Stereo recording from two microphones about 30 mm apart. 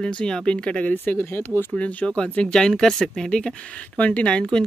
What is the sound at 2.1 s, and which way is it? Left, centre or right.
Speech, left.